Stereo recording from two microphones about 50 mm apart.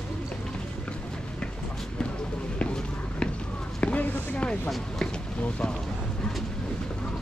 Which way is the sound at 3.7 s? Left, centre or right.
Left.